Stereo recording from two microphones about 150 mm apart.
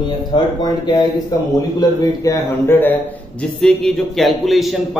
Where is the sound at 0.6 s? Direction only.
25° left (ahead or behind).